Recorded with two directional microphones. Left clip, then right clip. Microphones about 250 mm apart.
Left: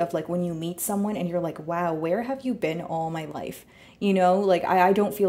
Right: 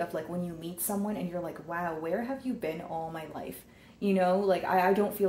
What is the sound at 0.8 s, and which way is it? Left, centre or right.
Speech, left.